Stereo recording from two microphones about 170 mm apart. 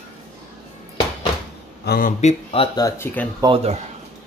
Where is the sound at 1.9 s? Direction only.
55° left (ahead or behind).